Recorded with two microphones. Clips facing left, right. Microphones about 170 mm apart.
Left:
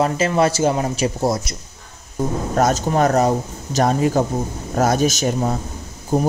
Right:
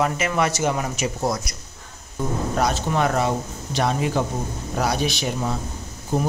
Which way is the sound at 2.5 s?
45° left (ahead or behind).